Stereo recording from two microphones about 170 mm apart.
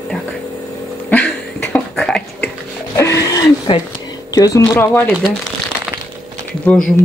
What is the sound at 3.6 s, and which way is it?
Speech, 25° left (ahead or behind).